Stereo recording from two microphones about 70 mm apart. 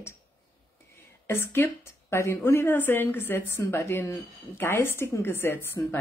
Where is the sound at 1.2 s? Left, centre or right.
Left.